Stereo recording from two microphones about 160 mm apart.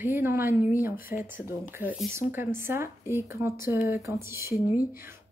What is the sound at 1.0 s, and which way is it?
Speech, 60° left (ahead or behind).